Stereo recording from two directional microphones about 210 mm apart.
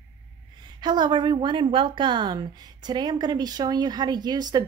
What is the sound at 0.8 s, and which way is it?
Speech, 20° right (ahead or behind).